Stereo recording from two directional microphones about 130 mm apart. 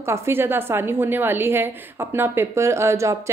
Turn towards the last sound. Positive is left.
turn(degrees=-20)  # may be behind; listen again after turning